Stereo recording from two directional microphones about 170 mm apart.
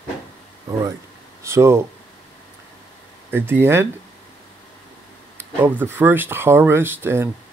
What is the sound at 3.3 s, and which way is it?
Speech, 15° right (ahead or behind).